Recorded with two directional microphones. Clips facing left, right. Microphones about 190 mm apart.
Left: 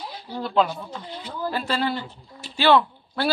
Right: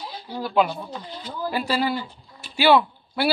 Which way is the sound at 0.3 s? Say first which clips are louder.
Even; 10° right (ahead or behind).